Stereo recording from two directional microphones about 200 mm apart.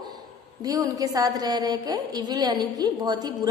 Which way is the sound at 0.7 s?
20° right (ahead or behind).